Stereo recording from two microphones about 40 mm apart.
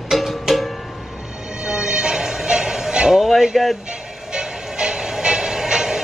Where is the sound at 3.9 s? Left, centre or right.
Right.